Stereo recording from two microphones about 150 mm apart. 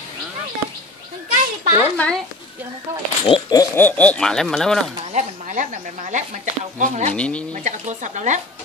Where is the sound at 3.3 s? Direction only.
25° left (ahead or behind).